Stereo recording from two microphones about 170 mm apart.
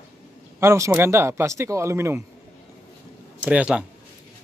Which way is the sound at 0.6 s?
15° right (ahead or behind).